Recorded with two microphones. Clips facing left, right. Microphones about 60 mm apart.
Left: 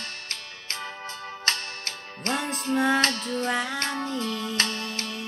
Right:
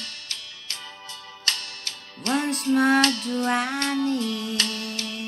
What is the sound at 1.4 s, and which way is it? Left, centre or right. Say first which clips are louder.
Music: left 1 dB; left.